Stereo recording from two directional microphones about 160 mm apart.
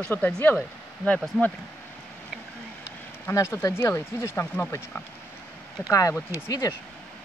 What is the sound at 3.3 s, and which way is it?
Speech, 15° left (ahead or behind).